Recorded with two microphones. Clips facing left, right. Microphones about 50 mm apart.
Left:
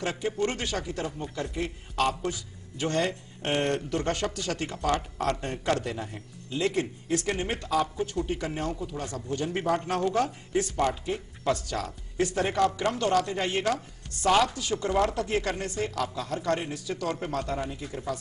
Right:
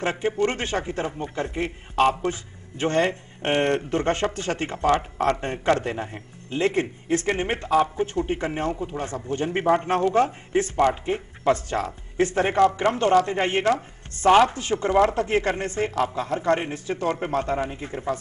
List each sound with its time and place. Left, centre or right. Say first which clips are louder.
0.0 s speech: right 5 dB; right